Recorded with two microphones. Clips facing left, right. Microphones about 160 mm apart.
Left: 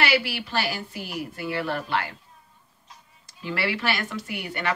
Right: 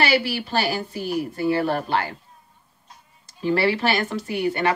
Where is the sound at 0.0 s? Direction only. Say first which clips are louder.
Right 3 dB; 30° right (ahead or behind).